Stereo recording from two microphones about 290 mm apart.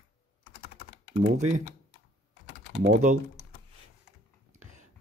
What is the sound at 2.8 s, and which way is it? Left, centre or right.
Speech, right.